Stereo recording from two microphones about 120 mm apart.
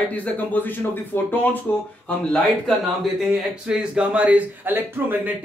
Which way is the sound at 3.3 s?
5° right (ahead or behind).